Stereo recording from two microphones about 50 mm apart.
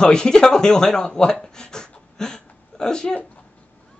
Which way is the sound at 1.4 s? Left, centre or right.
Centre.